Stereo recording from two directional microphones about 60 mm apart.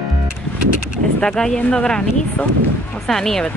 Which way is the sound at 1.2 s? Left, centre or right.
Centre.